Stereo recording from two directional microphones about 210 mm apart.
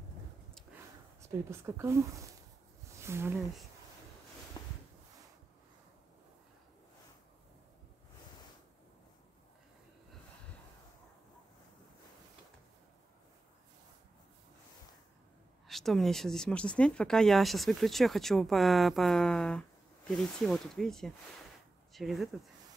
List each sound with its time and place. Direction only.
1.2 s speech: 15° right (ahead or behind)
3.0 s speech: 10° right (ahead or behind)
4.6 s a sound: 20° left (ahead or behind)
15.7 s speech: centre (ahead or behind)